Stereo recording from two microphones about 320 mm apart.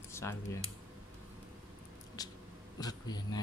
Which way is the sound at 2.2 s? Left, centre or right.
Centre.